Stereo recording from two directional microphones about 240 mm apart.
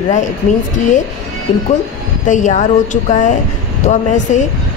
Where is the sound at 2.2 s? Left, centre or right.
Left.